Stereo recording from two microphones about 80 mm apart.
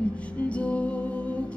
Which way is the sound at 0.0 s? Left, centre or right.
Centre.